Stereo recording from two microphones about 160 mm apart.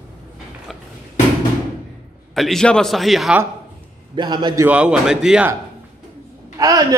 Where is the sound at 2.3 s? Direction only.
Centre (ahead or behind).